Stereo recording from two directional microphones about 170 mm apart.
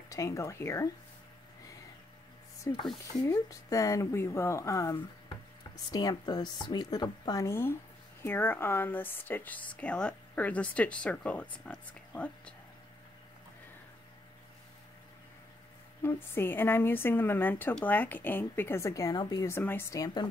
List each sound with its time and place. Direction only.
0.1 s a woman's voice: 20° left (ahead or behind)
2.7 s a woman's voice: 15° left (ahead or behind)
16.0 s a woman's voice: 15° left (ahead or behind)